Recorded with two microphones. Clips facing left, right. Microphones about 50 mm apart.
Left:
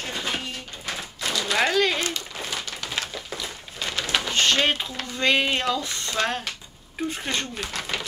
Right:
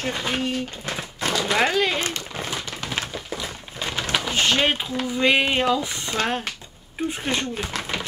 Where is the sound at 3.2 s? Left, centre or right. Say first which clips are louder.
Right 3 dB; centre.